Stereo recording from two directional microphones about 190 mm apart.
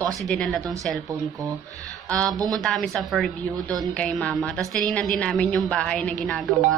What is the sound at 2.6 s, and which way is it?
A woman's voice, 5° left (ahead or behind).